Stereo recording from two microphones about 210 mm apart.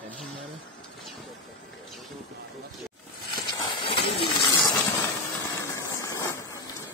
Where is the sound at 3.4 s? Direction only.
25° left (ahead or behind).